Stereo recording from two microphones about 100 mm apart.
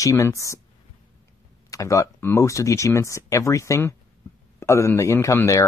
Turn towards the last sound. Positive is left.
turn(degrees=30)  # may be behind; listen again after turning